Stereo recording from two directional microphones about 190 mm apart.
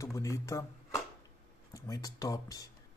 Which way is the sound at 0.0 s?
15° left (ahead or behind).